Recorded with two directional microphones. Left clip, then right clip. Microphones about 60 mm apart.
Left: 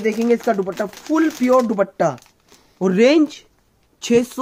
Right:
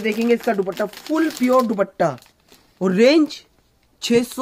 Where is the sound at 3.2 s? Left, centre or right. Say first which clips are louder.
Left 1 dB; right.